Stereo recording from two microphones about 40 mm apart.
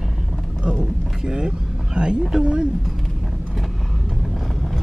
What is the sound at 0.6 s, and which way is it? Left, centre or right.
Speech, right.